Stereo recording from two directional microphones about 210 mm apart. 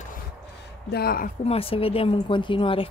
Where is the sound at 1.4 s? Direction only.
25° left (ahead or behind).